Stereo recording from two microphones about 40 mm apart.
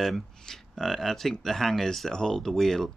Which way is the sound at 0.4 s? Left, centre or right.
Centre.